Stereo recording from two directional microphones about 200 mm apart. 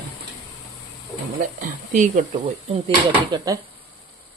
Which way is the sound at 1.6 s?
40° right (ahead or behind).